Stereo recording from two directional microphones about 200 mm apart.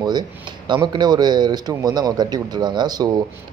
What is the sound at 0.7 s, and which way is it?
Speech, 20° right (ahead or behind).